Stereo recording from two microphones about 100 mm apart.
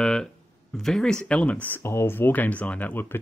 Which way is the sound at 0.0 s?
5° left (ahead or behind).